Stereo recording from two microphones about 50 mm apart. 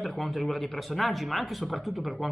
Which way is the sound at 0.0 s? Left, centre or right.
Centre.